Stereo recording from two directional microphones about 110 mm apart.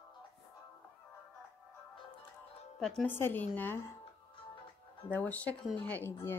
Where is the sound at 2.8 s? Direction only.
5° left (ahead or behind).